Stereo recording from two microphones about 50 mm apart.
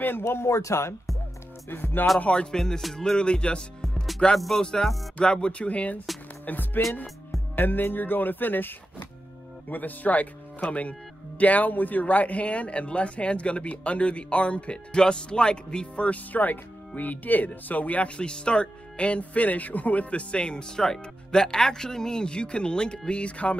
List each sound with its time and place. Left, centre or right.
0.2 s speech: left
1.7 s speech: left
2.1 s speech: left
2.5 s music: centre
3.0 s speech: centre
3.8 s music: centre
4.6 s music: centre
5.2 s speech: centre
6.4 s speech: left; by 16.2 s centre
16.3 s speech: left